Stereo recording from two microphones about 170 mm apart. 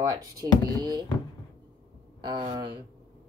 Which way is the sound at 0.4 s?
25° right (ahead or behind).